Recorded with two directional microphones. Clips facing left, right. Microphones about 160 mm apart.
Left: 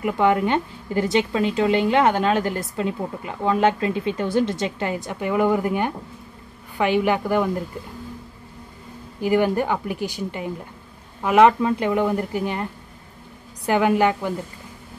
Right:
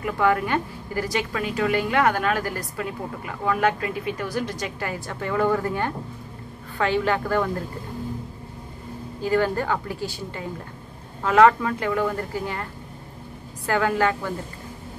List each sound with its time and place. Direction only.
0.0 s a woman's voice: 20° left (ahead or behind)
9.2 s a woman's voice: 15° left (ahead or behind)
13.7 s a woman's voice: 20° left (ahead or behind)